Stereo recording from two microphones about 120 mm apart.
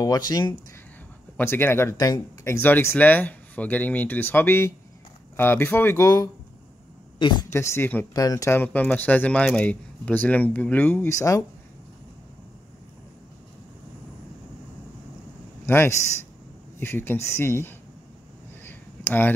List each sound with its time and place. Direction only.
0.0 s speech: 35° left (ahead or behind)
1.3 s speech: 20° left (ahead or behind)
7.2 s a woman's voice: 40° left (ahead or behind)
7.5 s speech: 20° left (ahead or behind)
8.1 s speech: 30° left (ahead or behind)
8.5 s speech: 15° left (ahead or behind)
15.6 s speech: 20° left (ahead or behind)
18.6 s a sound: 15° left (ahead or behind)